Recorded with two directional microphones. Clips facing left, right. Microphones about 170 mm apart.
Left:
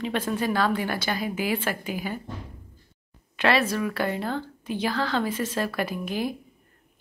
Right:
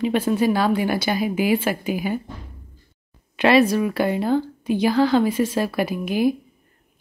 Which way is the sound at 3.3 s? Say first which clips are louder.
Right 7 dB; 15° right (ahead or behind).